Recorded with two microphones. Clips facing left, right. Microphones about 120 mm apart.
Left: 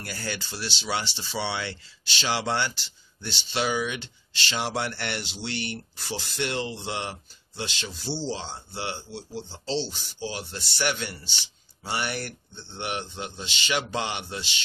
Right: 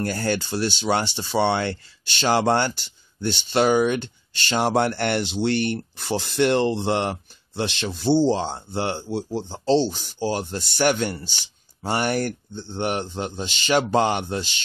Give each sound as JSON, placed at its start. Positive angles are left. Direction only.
{"t": 0.0, "sound": "speech", "side_deg": -50}